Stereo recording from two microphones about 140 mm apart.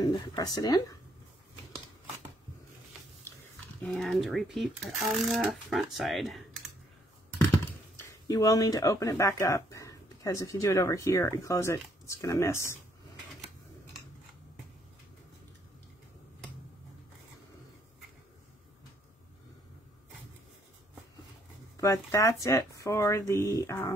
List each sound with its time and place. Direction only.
0.0 s speech: 30° left (ahead or behind)
3.9 s speech: centre (ahead or behind)
7.6 s speech: 20° left (ahead or behind)
21.7 s speech: 20° left (ahead or behind)